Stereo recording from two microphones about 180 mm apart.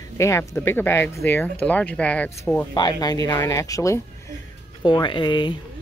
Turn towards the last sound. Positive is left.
turn(degrees=25)  # may be behind; listen again after turning